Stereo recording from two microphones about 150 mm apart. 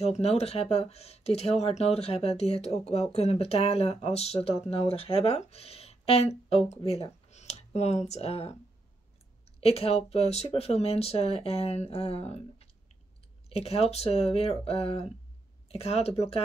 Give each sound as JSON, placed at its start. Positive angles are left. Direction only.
{"t": 0.0, "sound": "speech", "side_deg": 45}
{"t": 9.6, "sound": "speech", "side_deg": 40}